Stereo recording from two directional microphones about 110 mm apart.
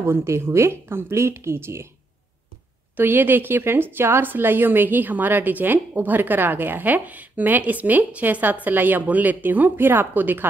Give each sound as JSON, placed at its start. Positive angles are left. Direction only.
{"t": 0.0, "sound": "speech", "side_deg": -25}
{"t": 3.0, "sound": "a woman's voice", "side_deg": -20}